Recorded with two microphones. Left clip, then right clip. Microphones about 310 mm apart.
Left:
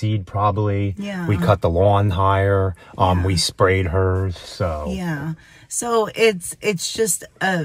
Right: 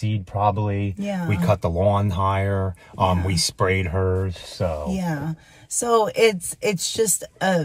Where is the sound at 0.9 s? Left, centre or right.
Centre.